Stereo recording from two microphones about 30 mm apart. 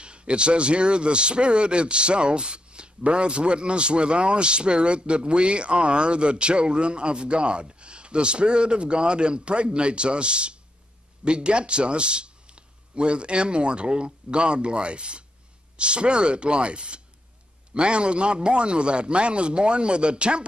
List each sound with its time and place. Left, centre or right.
0.0 s speech: right